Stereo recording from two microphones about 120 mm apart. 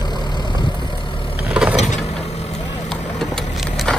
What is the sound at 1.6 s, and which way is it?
Vehicle, 10° right (ahead or behind).